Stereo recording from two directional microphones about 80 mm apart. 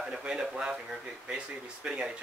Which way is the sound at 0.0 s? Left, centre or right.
Centre.